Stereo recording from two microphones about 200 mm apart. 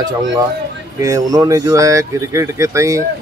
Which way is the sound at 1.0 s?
20° right (ahead or behind).